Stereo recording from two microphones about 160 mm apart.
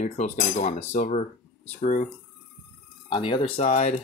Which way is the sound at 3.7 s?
50° left (ahead or behind).